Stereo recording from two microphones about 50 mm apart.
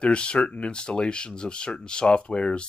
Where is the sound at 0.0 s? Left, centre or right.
Left.